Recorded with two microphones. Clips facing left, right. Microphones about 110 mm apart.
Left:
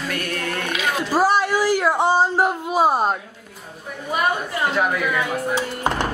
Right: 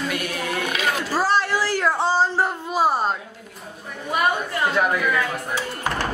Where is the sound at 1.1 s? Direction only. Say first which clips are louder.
Left 4 dB; 15° left (ahead or behind).